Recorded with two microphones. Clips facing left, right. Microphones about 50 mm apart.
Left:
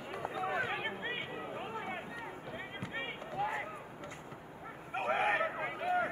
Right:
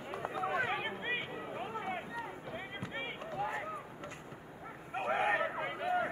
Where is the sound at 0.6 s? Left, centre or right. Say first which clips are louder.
Right 1 dB; right.